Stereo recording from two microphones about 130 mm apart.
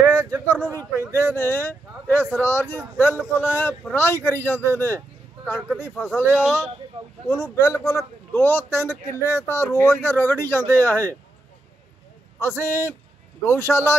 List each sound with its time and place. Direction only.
0.1 s speech: 10° left (ahead or behind)
6.1 s speech: 15° left (ahead or behind)
12.4 s speech: 20° left (ahead or behind)